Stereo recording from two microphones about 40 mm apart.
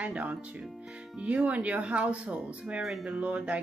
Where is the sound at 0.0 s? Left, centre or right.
Right.